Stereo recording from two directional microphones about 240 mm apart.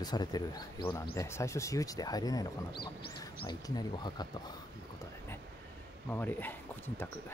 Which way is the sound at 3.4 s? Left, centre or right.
Centre.